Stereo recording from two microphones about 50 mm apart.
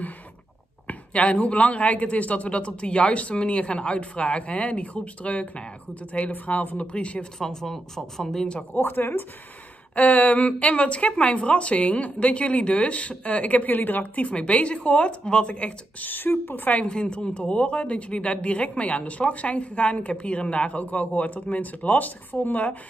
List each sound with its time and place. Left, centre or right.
0.8 s speech: left
7.3 s speech: centre
8.7 s speech: left
9.9 s speech: left
13.7 s speech: left
14.3 s speech: left
16.0 s speech: left
16.8 s speech: centre